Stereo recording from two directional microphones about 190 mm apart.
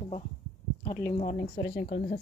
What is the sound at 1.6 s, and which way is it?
Speech, 55° left (ahead or behind).